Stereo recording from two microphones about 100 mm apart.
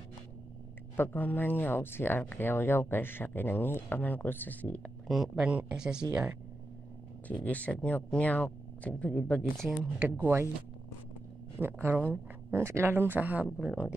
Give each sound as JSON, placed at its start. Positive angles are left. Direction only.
{"t": 0.9, "sound": "speech", "side_deg": 20}
{"t": 5.0, "sound": "speech", "side_deg": 0}
{"t": 7.2, "sound": "speech", "side_deg": 15}
{"t": 9.9, "sound": "speech", "side_deg": -20}
{"t": 11.5, "sound": "speech", "side_deg": -20}